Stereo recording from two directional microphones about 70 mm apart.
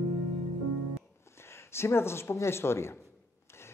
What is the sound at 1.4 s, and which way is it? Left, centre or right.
Speech, left.